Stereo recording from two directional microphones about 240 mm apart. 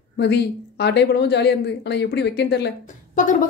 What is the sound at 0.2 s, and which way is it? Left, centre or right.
A woman's voice, left.